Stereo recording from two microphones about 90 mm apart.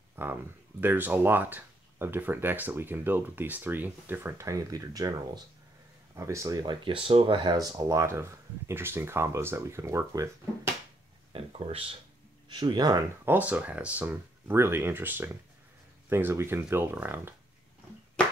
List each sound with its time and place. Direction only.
0.1 s speech: 25° right (ahead or behind)
6.6 s speech: 60° right (ahead or behind)
7.5 s speech: 40° right (ahead or behind)
11.3 s speech: 90° right
12.4 s speech: 50° right (ahead or behind)
13.2 s speech: 20° right (ahead or behind)